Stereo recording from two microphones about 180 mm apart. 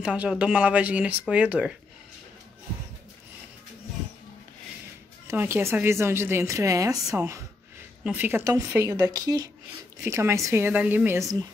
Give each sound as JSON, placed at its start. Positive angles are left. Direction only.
{"t": 0.0, "sound": "a woman's voice", "side_deg": -5}
{"t": 5.3, "sound": "a woman's voice", "side_deg": -15}